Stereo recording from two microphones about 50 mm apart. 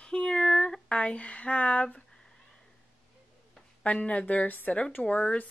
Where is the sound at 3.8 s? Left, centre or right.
Left.